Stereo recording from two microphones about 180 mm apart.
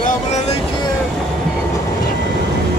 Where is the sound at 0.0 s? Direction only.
40° left (ahead or behind).